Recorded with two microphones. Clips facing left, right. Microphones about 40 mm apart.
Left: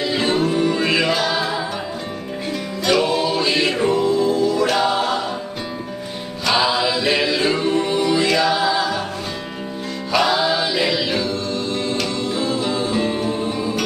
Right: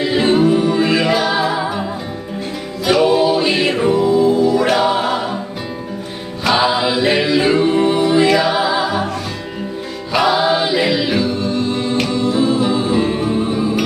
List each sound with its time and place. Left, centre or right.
0.0 s music: right
2.8 s music: centre
4.6 s choir: centre
6.4 s a capella: right
8.2 s music: centre
10.1 s music: centre